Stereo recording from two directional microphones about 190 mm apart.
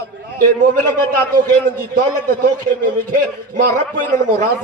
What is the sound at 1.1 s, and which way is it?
A man's voice, 45° right (ahead or behind).